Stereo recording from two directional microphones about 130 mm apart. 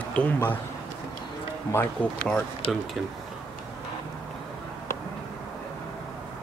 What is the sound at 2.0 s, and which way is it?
Speech, 10° left (ahead or behind).